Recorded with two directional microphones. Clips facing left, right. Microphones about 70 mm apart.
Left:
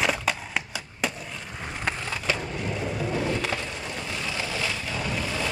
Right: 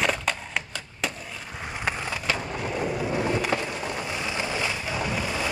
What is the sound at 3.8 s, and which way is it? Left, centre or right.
Boat, centre.